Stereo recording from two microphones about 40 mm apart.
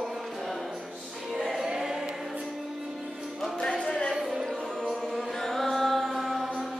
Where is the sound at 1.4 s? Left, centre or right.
Centre.